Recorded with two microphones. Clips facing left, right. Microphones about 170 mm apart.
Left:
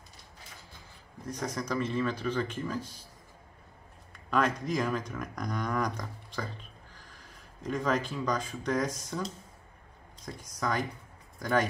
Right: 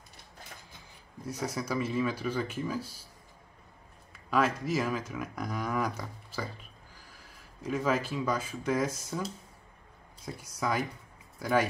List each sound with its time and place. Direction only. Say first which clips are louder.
1.2 s speech: even; 10° right (ahead or behind)
4.1 s speech: even; 5° right (ahead or behind)